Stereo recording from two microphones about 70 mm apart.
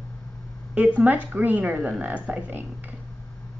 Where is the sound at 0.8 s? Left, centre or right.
Right.